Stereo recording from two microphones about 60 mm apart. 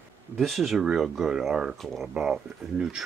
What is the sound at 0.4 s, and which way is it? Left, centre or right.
Speech, centre.